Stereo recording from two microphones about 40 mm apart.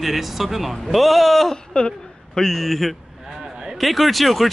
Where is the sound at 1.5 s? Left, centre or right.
Left.